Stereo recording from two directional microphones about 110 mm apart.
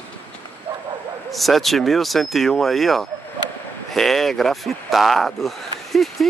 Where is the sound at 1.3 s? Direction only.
Centre (ahead or behind).